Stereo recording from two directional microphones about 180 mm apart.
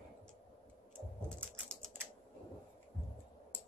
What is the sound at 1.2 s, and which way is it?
Typing, 5° left (ahead or behind).